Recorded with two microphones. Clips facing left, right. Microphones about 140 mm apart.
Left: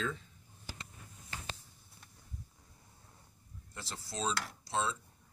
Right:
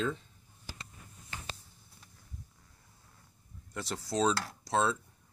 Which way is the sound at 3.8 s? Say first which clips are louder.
Right 9 dB; 75° right (ahead or behind).